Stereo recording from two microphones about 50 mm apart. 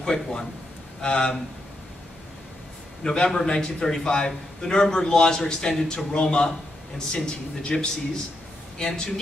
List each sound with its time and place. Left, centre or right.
0.0 s a man's voice: centre
3.0 s a man's voice: centre